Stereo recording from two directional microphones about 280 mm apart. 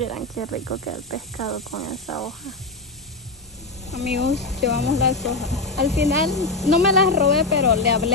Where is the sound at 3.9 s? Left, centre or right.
Left.